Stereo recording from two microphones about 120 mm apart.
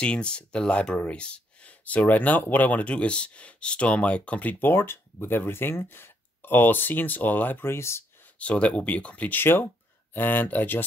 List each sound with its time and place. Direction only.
0.0 s speech: 10° left (ahead or behind)
8.4 s speech: 10° left (ahead or behind)